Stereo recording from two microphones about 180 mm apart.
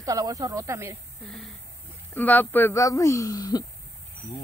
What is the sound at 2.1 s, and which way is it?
Speech, 10° left (ahead or behind).